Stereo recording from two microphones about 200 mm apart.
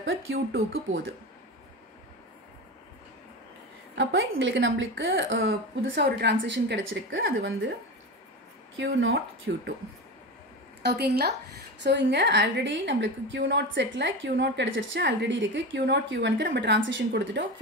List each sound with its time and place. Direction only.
0.0 s a woman's voice: 75° right (ahead or behind)
3.9 s a woman's voice: 65° right (ahead or behind)
8.7 s a woman's voice: 75° right (ahead or behind)
9.5 s a woman's voice: 65° right (ahead or behind)
10.8 s a woman's voice: 55° right (ahead or behind)